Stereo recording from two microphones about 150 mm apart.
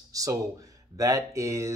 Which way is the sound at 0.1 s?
20° right (ahead or behind).